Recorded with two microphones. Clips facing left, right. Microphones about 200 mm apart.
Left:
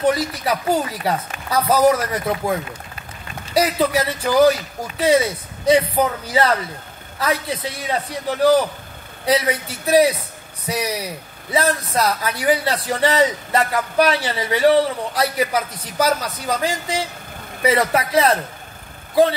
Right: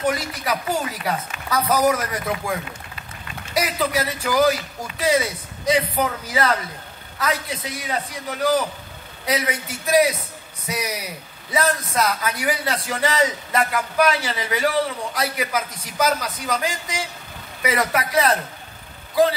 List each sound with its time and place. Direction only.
0.0 s speech: 30° left (ahead or behind)
3.5 s speech: 30° left (ahead or behind)